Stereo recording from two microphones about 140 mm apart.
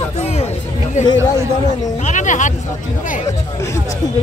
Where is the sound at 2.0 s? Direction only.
60° left (ahead or behind).